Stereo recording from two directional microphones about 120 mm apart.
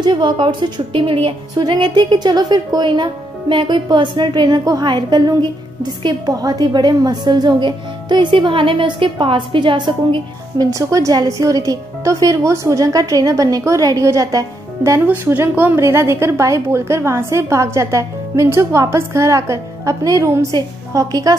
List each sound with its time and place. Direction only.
0.0 s a woman's voice: 40° right (ahead or behind)
10.7 s a woman's voice: 25° right (ahead or behind)